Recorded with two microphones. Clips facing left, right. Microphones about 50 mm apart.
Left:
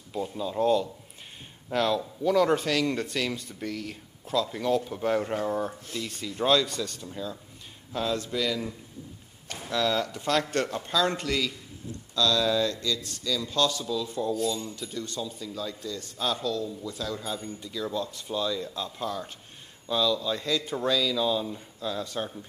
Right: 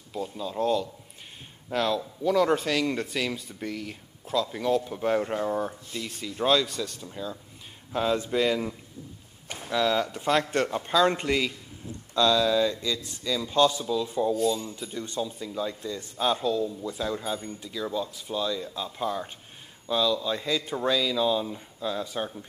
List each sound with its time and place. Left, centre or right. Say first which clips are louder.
0.1 s speech: left 1 dB; centre
7.9 s speech: right 4 dB; centre
9.7 s speech: right 2 dB; centre
12.4 s speech: right 2 dB; centre